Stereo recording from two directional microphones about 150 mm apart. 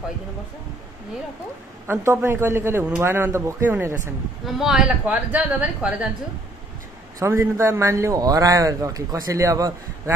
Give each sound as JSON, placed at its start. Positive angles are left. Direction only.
{"t": 1.9, "sound": "a man's voice", "side_deg": -15}
{"t": 4.5, "sound": "a man's voice", "side_deg": -5}
{"t": 7.2, "sound": "a man's voice", "side_deg": -20}